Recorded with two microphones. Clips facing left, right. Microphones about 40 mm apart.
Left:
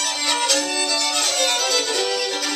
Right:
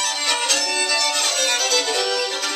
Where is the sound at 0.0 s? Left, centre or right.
Centre.